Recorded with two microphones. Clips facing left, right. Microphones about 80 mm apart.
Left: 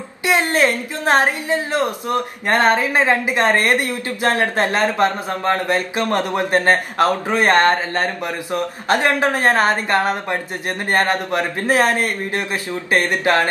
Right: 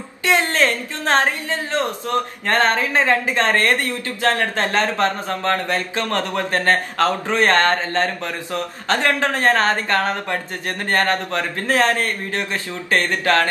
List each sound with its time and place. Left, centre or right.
0.2 s a woman's voice: centre